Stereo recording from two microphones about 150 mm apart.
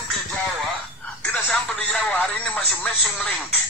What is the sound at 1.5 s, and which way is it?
Speech, 10° left (ahead or behind).